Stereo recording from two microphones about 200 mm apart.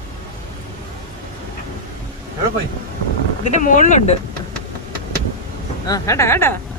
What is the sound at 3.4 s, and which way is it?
Speech, 40° left (ahead or behind).